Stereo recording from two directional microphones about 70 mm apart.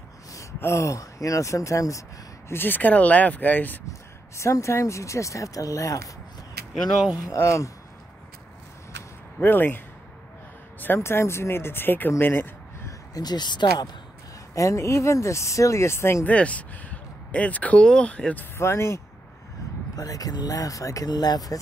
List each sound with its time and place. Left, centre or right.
0.3 s gasp: left
0.6 s speech: left
2.5 s speech: left
4.4 s speech: left
7.2 s speech: left
9.4 s speech: left
10.8 s speech: left
12.2 s a sound: left
13.1 s speech: left
14.5 s speech: left
16.3 s speech: centre
18.6 s speech: left
20.0 s speech: left
21.1 s speech: left